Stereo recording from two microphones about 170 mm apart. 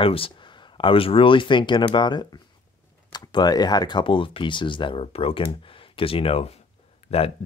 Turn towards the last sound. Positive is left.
turn(degrees=35)  # may be behind; listen again after turning